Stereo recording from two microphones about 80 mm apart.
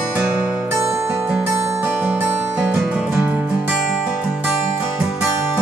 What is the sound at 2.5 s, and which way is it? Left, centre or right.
Music, centre.